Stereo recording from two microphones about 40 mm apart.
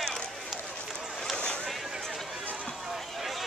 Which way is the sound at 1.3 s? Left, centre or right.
Left.